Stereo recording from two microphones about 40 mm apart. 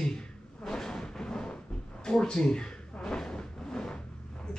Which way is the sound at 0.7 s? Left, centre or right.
Centre.